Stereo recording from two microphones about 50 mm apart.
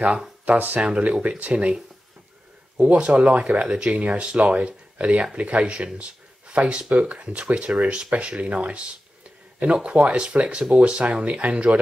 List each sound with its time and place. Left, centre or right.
0.5 s speech: right
0.7 s speech: right
2.8 s speech: right